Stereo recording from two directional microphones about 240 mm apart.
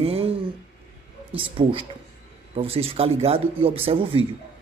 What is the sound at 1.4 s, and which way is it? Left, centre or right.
Speech, right.